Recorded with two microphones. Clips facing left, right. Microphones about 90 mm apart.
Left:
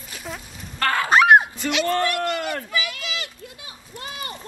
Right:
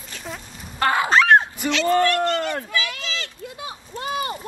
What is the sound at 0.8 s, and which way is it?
Goose, 20° right (ahead or behind).